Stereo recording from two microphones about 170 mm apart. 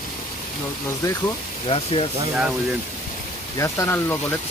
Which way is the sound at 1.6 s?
30° left (ahead or behind).